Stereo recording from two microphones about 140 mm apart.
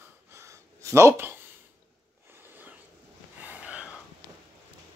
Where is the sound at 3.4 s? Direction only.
10° right (ahead or behind).